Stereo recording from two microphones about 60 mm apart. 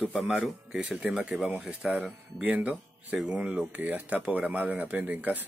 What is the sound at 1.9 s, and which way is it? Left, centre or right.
Speech, right.